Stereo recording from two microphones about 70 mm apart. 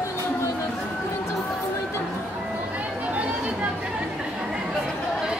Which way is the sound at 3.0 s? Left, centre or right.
Right.